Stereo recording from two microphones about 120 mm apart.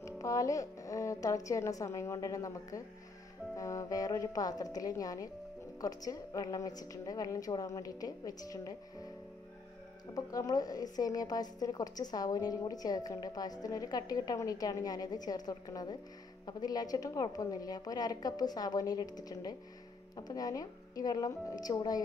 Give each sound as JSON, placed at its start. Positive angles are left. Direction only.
{"t": 0.0, "sound": "a woman's voice", "side_deg": 25}
{"t": 10.1, "sound": "a woman's voice", "side_deg": 30}